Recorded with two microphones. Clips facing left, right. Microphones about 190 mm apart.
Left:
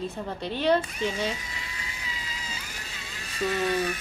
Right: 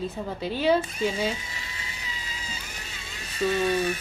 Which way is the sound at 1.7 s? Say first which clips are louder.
Even; 25° right (ahead or behind).